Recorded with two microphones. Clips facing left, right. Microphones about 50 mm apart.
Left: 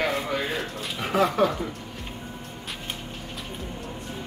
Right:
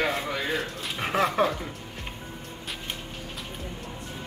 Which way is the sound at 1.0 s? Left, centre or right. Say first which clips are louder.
Left 2 dB; right.